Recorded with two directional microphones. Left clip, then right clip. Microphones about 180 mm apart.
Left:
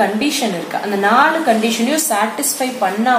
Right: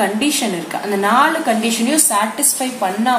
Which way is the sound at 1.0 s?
35° left (ahead or behind).